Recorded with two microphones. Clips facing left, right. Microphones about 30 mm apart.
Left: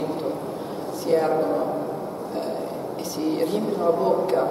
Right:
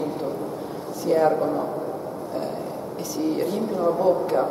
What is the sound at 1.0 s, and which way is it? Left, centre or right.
Speech, left.